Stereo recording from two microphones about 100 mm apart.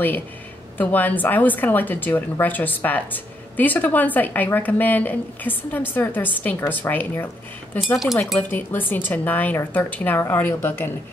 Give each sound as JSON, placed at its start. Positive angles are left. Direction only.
{"t": 0.7, "sound": "a woman's voice", "side_deg": 15}
{"t": 7.8, "sound": "speech", "side_deg": -5}
{"t": 8.4, "sound": "a woman's voice", "side_deg": 20}